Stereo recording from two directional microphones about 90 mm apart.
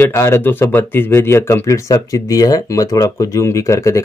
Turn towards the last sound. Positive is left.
turn(degrees=35)  # may be behind; listen again after turning